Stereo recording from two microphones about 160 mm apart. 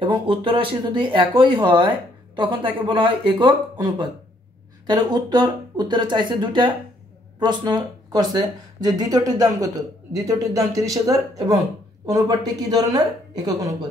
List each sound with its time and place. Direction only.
0.0 s speech: 35° right (ahead or behind)
4.8 s speech: 25° right (ahead or behind)